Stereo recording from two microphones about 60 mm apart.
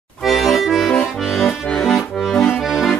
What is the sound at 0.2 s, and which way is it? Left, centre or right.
Accordion, centre.